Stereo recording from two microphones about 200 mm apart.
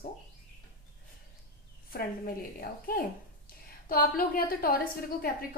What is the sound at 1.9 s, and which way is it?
A woman's voice, 45° left (ahead or behind).